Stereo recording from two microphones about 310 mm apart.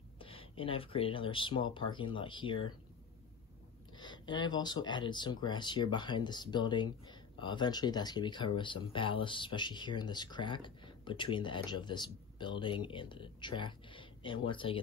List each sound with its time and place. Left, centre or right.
0.2 s speech: centre
3.9 s speech: centre